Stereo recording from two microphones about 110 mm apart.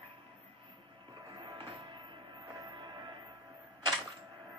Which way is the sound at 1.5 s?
50° right (ahead or behind).